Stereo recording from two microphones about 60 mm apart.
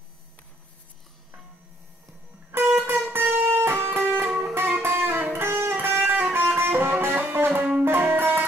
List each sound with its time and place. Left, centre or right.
2.5 s music: right